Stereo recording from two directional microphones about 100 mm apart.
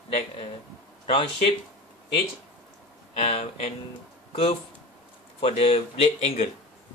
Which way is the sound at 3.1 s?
90° left.